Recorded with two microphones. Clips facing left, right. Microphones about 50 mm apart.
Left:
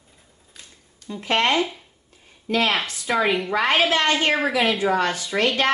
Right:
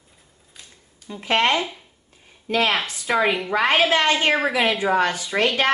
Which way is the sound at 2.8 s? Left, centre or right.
Centre.